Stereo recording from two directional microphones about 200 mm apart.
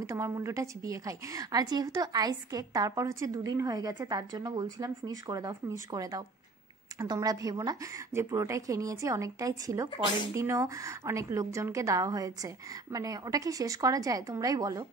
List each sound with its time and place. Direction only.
0.0 s a woman's voice: 15° right (ahead or behind)